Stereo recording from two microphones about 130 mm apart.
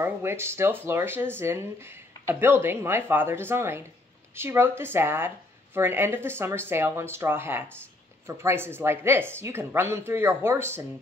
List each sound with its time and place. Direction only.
0.0 s speech: 20° right (ahead or behind)